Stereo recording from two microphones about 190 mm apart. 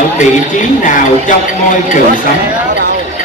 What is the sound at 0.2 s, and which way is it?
Speech, 40° left (ahead or behind).